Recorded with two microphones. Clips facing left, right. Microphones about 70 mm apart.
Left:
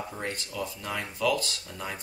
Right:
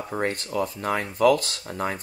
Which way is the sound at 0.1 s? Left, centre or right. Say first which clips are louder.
Right 9 dB; right.